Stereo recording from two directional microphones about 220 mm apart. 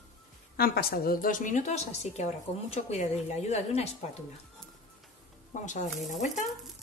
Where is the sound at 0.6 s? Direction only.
45° left (ahead or behind).